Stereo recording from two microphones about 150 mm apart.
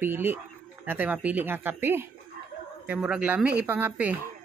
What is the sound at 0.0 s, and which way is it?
Mantra, 15° right (ahead or behind).